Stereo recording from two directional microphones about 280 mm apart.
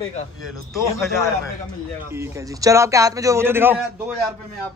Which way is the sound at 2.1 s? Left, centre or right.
Centre.